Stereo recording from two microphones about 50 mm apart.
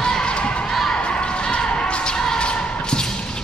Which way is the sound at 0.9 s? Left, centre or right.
Centre.